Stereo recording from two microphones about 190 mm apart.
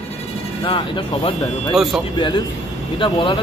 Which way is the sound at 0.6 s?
25° left (ahead or behind).